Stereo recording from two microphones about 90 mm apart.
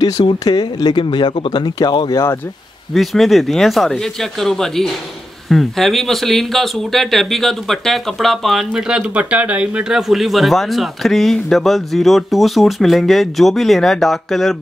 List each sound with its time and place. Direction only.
0.2 s speech: 55° left (ahead or behind)
2.9 s speech: centre (ahead or behind)